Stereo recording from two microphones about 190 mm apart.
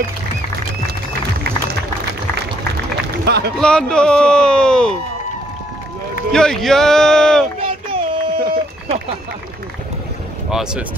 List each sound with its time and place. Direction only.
3.3 s a man's voice: 60° right (ahead or behind)
3.5 s speech: 5° left (ahead or behind)
6.3 s speech: 5° left (ahead or behind)
7.6 s a sound: 25° right (ahead or behind)
10.5 s speech: 5° right (ahead or behind)